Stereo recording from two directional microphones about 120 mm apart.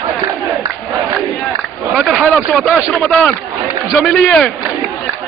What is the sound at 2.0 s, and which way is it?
Speech, centre (ahead or behind).